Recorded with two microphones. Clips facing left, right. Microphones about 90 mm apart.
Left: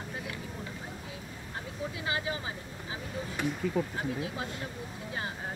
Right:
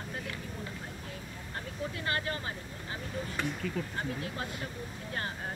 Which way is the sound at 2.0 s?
5° left (ahead or behind).